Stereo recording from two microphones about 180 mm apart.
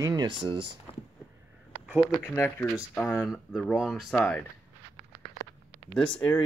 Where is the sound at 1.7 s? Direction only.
5° right (ahead or behind).